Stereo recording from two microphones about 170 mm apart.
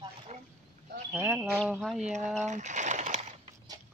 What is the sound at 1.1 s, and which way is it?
Speech, 10° right (ahead or behind).